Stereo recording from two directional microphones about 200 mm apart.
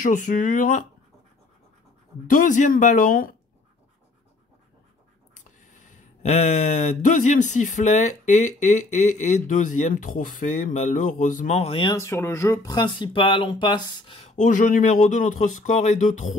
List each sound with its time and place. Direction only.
0.0 s speech: 40° left (ahead or behind)
2.2 s speech: 40° left (ahead or behind)
5.9 s speech: 35° left (ahead or behind)